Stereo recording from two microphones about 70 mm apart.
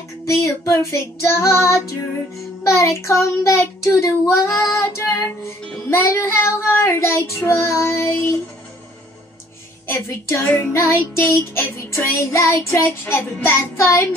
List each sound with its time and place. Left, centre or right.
0.3 s child singing: left
9.8 s child singing: left
10.4 s music: left
10.8 s child singing: left